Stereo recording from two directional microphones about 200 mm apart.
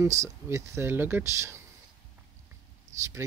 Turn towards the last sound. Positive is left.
turn(degrees=-15)  # may be behind; listen again after turning